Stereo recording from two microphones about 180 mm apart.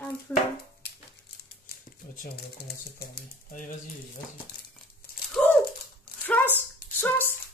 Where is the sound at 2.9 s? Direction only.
55° left (ahead or behind).